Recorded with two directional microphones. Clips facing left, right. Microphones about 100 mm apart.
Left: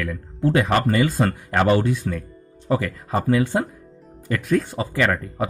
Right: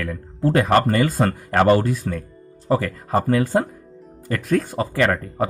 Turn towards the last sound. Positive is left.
turn(degrees=-45)  # may be behind; listen again after turning